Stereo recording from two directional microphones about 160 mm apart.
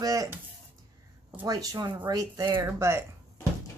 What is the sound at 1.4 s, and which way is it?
Speech, 25° right (ahead or behind).